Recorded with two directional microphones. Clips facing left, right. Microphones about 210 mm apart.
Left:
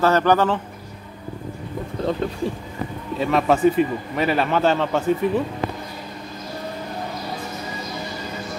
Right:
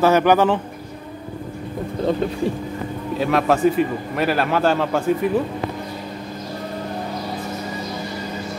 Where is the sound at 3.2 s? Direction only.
Centre (ahead or behind).